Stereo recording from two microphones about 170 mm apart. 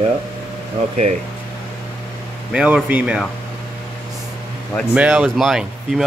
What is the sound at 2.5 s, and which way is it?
Speech, 5° right (ahead or behind).